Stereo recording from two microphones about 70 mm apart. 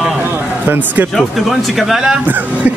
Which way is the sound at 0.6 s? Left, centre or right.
Right.